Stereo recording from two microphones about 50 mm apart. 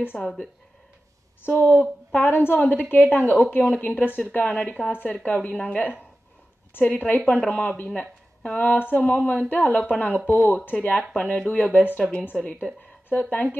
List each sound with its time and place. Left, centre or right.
0.1 s speech: centre
1.4 s speech: left
12.6 s speech: centre
13.1 s speech: left